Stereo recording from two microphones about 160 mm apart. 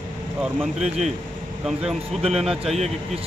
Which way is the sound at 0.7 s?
45° right (ahead or behind).